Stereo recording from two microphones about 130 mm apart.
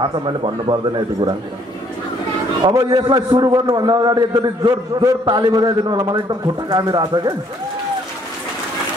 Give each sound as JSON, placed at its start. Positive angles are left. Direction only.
{"t": 0.0, "sound": "a man's voice", "side_deg": -40}
{"t": 2.7, "sound": "a man's voice", "side_deg": -30}